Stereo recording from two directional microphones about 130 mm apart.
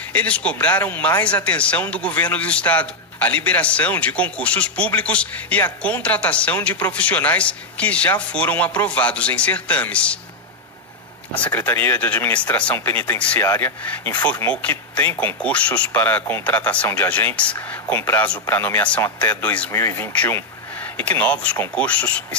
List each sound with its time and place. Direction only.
0.1 s speech: 10° left (ahead or behind)
11.3 s speech: 10° left (ahead or behind)